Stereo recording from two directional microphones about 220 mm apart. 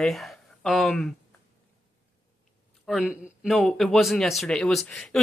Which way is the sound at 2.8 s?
Centre (ahead or behind).